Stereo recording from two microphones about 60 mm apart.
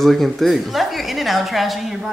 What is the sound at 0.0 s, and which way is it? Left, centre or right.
Speech, centre.